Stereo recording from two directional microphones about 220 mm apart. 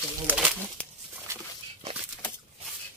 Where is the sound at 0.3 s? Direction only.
5° right (ahead or behind).